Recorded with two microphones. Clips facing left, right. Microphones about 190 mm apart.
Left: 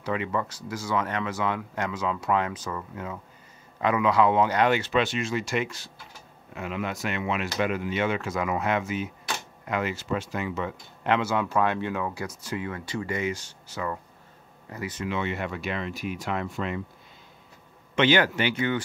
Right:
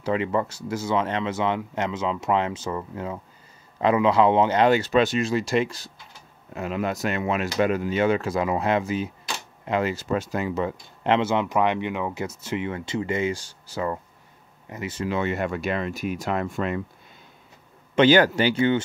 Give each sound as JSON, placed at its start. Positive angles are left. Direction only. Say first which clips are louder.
{"t": 0.0, "sound": "speech", "louder": "right 4 dB", "side_deg": -30}
{"t": 17.9, "sound": "speech", "louder": "right 5 dB", "side_deg": -40}